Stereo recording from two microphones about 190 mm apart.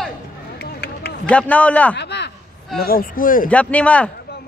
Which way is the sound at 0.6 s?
55° left (ahead or behind).